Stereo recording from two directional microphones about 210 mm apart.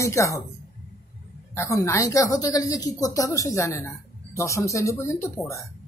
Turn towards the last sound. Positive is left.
turn(degrees=15)  # may be behind; listen again after turning